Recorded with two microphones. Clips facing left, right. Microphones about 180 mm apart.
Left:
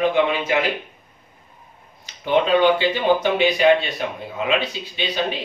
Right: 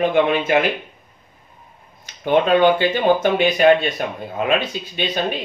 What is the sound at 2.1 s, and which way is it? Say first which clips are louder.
Speech: right 2 dB; 50° right (ahead or behind).